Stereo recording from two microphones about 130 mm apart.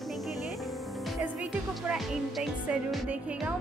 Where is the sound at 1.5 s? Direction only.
Centre (ahead or behind).